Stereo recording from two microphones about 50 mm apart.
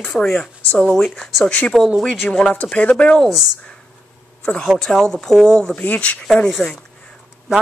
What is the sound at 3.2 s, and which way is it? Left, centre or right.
Speech, centre.